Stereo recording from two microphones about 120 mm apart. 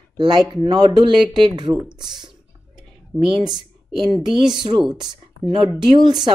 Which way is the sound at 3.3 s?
40° right (ahead or behind).